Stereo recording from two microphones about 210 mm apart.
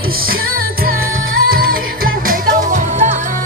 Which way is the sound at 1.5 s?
45° right (ahead or behind).